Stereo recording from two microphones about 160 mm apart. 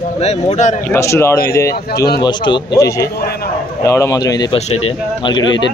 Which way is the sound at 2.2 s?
30° left (ahead or behind).